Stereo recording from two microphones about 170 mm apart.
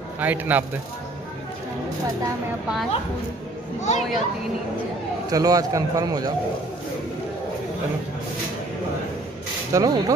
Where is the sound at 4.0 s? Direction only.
Centre (ahead or behind).